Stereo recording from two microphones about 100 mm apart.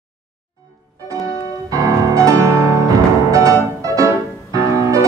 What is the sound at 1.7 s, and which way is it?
Music, 35° right (ahead or behind).